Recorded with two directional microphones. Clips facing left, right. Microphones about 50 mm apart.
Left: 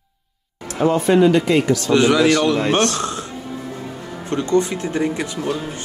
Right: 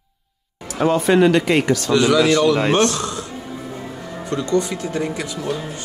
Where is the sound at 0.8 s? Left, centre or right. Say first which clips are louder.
Even; right.